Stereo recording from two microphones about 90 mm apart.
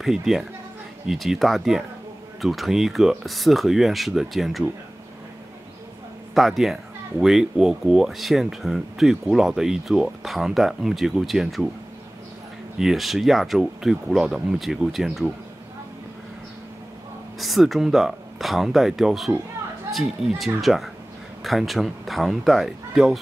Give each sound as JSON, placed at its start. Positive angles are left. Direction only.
{"t": 0.0, "sound": "speech", "side_deg": -5}
{"t": 6.3, "sound": "speech", "side_deg": 0}
{"t": 12.7, "sound": "speech", "side_deg": -5}
{"t": 17.4, "sound": "speech", "side_deg": 0}